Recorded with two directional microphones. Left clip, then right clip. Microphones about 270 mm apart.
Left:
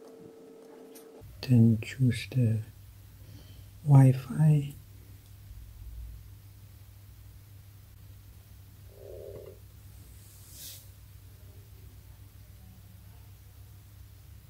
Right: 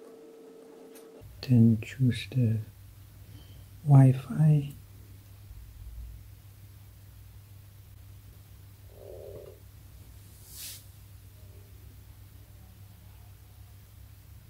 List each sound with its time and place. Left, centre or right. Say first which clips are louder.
1.4 s speech: right 1 dB; centre
3.8 s speech: right 1 dB; centre